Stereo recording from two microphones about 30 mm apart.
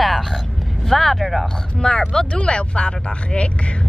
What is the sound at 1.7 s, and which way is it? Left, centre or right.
Speech, left.